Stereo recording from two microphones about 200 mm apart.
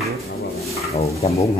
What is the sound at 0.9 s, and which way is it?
Speech, 30° left (ahead or behind).